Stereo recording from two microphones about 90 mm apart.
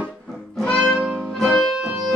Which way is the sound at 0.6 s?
10° left (ahead or behind).